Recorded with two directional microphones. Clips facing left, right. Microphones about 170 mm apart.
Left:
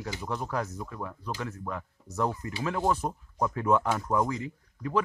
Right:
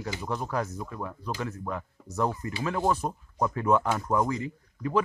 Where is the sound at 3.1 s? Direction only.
5° right (ahead or behind).